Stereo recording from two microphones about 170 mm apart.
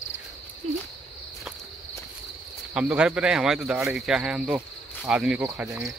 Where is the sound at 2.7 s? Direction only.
5° right (ahead or behind).